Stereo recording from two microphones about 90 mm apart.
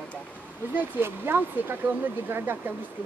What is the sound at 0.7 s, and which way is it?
Speech, 20° right (ahead or behind).